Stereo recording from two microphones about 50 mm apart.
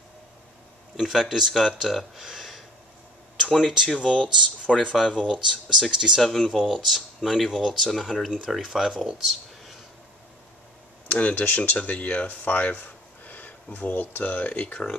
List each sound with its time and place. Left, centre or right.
0.9 s speech: centre
4.0 s speech: centre
5.0 s speech: centre
5.3 s speech: centre
6.2 s speech: centre
11.1 s speech: left
11.4 s speech: left
11.7 s speech: left